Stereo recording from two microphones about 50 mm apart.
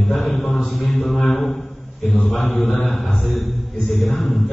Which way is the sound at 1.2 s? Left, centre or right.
Left.